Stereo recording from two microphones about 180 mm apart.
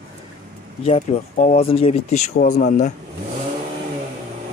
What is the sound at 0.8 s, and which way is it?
Speech, 35° left (ahead or behind).